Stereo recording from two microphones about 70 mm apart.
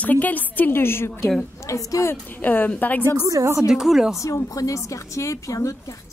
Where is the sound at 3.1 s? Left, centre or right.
Right.